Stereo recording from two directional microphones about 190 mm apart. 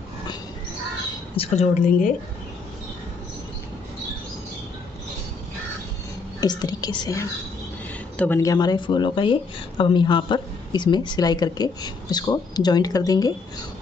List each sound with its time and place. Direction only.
1.3 s a woman's voice: 30° left (ahead or behind)
6.4 s speech: 20° left (ahead or behind)